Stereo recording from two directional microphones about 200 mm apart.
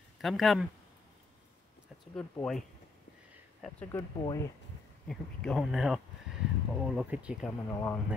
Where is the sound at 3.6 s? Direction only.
Centre (ahead or behind).